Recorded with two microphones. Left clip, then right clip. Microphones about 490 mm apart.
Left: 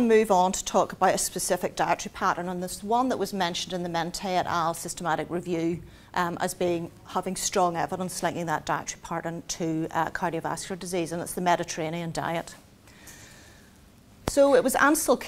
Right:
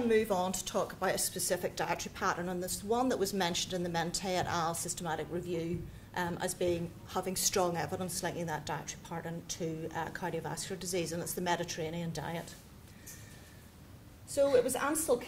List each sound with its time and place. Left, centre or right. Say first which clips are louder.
0.1 s a woman's voice: left 11 dB; left
14.3 s speech: left 8 dB; left